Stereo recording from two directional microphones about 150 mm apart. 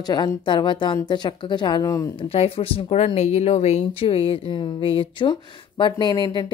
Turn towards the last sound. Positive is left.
turn(degrees=25)  # may be behind; listen again after turning